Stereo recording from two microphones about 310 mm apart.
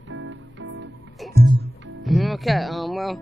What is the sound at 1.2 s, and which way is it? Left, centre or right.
Music, centre.